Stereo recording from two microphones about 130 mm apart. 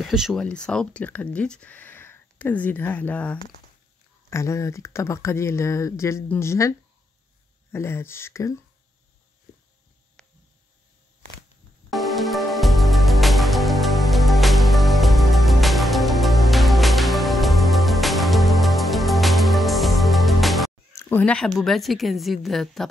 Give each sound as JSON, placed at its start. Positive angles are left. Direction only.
{"t": 0.0, "sound": "a woman's voice", "side_deg": 0}
{"t": 4.3, "sound": "speech", "side_deg": 20}
{"t": 7.7, "sound": "speech", "side_deg": 20}
{"t": 10.2, "sound": "a sound", "side_deg": 5}
{"t": 11.9, "sound": "music", "side_deg": 0}
{"t": 21.0, "sound": "a woman's voice", "side_deg": 10}